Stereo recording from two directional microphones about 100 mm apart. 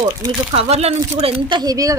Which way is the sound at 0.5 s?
90° right.